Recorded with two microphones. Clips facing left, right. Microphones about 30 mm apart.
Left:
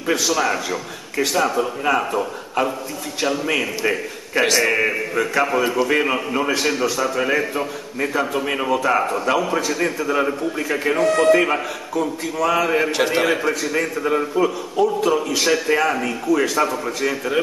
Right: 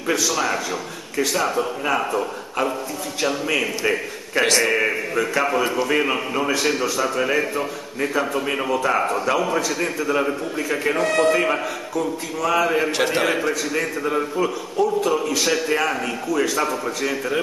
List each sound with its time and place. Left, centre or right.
0.1 s a man's voice: left
0.5 s a man's voice: centre
15.5 s a man's voice: centre